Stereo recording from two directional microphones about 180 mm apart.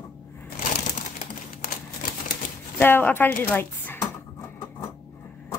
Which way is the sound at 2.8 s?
10° left (ahead or behind).